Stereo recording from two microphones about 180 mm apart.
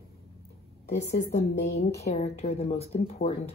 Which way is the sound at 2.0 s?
35° left (ahead or behind).